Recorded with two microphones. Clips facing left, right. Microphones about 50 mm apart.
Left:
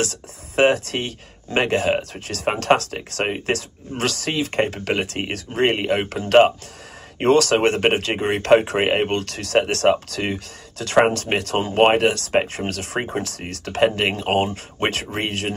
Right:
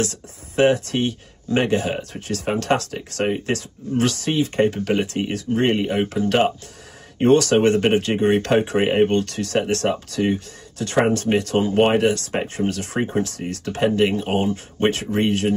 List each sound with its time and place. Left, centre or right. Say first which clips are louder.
0.0 s speech: even; left
9.1 s speech: even; left
11.3 s speech: right 1 dB; left
12.5 s speech: right 3 dB; left